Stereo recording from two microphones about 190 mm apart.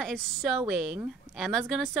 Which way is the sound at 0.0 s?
Centre (ahead or behind).